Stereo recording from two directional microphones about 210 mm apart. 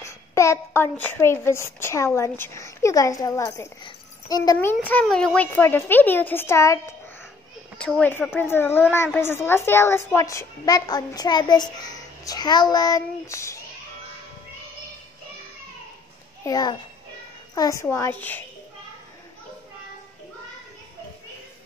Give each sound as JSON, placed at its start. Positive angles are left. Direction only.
{"t": 0.0, "sound": "a child's voice", "side_deg": 15}
{"t": 4.7, "sound": "a child's voice", "side_deg": 5}
{"t": 16.4, "sound": "a child's voice", "side_deg": 20}